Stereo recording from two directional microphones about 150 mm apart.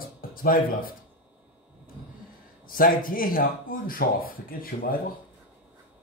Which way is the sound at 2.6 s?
70° left (ahead or behind).